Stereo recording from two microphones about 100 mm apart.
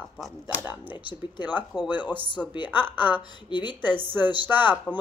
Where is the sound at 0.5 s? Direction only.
15° right (ahead or behind).